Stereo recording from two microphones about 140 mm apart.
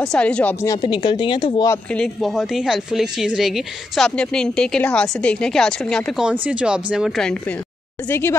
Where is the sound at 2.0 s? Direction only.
Centre (ahead or behind).